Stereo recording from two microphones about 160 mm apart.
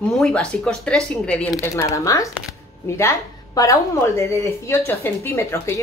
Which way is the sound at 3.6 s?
20° left (ahead or behind).